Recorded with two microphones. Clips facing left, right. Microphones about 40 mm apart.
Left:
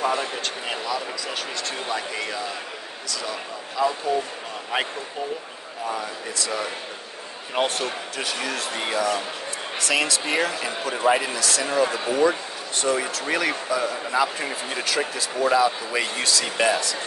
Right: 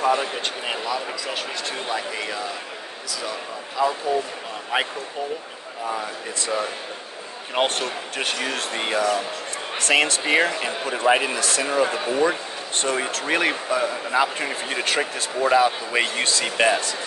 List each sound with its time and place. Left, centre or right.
0.0 s a sound: centre
0.7 s speech: centre
6.3 s speech: right
11.6 s speech: right
12.1 s speech: right